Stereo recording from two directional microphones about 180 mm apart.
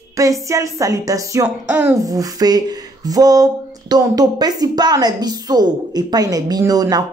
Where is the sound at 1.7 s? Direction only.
10° right (ahead or behind).